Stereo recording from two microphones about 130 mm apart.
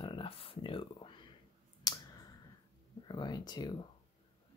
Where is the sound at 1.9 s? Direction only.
30° left (ahead or behind).